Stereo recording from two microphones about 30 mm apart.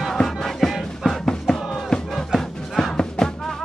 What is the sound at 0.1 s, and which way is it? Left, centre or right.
Music, centre.